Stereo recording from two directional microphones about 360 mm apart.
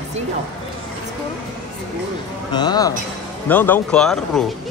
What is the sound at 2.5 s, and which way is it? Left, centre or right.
Speech, centre.